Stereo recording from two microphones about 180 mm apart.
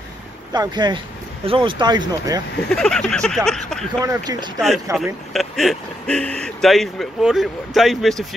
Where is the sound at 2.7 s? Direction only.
5° left (ahead or behind).